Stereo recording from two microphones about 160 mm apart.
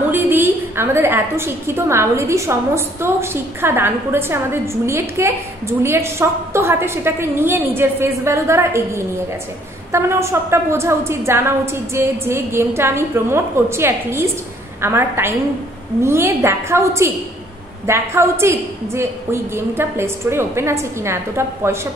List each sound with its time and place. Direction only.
0.1 s a woman's voice: 15° right (ahead or behind)